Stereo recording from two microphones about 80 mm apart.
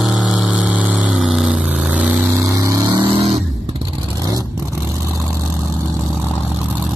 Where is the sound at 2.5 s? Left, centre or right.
Right.